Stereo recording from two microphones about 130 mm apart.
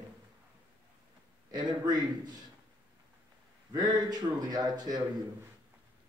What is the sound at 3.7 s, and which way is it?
A man's voice, 30° right (ahead or behind).